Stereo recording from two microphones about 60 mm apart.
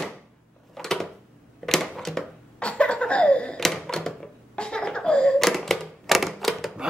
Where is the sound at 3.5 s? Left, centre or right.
Centre.